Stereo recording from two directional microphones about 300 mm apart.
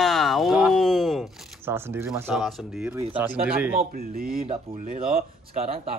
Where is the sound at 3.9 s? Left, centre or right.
Right.